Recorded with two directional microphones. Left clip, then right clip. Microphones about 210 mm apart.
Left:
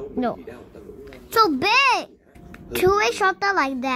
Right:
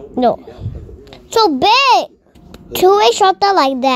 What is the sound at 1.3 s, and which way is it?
A child's voice, 15° right (ahead or behind).